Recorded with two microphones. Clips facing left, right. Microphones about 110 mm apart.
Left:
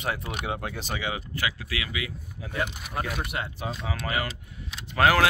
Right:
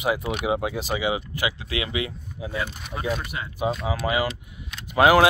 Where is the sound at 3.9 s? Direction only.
15° right (ahead or behind).